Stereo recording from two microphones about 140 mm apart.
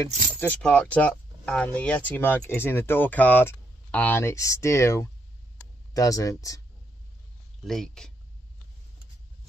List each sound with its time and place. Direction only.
0.4 s speech: 10° left (ahead or behind); by 6.6 s 25° left (ahead or behind)
7.6 s speech: 5° left (ahead or behind)